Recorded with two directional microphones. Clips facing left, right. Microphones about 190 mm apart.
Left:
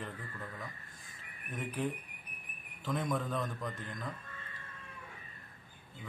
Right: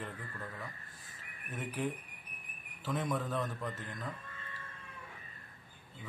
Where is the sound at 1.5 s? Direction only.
5° right (ahead or behind).